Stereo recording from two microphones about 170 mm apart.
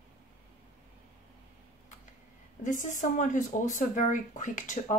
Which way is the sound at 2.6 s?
50° left (ahead or behind).